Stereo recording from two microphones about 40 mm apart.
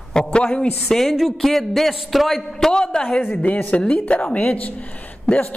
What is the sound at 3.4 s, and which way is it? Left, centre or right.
Speech, left.